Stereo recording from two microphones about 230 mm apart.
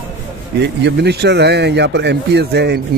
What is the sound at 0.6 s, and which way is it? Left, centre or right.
Speech, right.